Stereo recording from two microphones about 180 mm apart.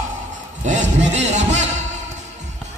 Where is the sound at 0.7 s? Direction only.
40° right (ahead or behind).